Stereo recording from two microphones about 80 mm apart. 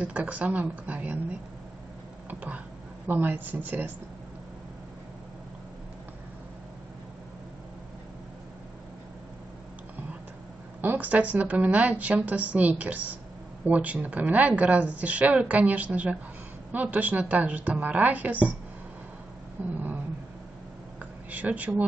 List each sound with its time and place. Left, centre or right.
0.0 s speech: centre
2.2 s a sound: centre
3.1 s speech: right
10.8 s speech: right
19.7 s a sound: right
21.0 s speech: centre